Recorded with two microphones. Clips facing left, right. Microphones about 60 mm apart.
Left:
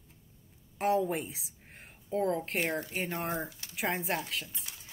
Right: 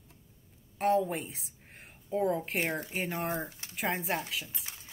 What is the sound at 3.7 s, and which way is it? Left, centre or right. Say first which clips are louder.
Speech: even; centre.